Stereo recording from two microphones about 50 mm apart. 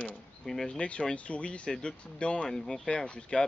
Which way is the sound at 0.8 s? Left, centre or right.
Centre.